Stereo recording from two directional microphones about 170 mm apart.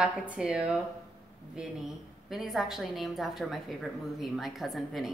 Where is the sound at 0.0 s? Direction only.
5° right (ahead or behind).